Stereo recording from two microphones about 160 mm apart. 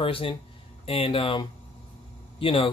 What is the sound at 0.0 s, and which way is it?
A man's voice, 35° left (ahead or behind).